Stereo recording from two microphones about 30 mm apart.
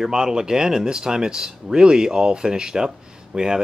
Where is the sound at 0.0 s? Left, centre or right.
Right.